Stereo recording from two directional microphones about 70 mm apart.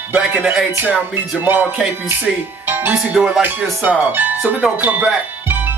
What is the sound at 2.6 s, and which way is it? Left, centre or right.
Music, right.